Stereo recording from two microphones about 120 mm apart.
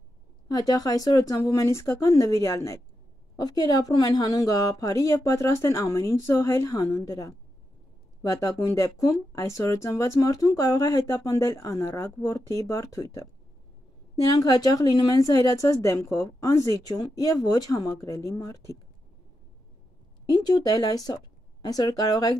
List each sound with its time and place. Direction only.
0.5 s speech: 30° left (ahead or behind)
14.3 s speech: 30° left (ahead or behind)
20.4 s speech: 35° left (ahead or behind)